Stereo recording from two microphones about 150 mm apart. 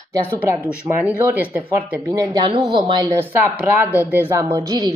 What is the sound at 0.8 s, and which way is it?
Speech, 10° right (ahead or behind).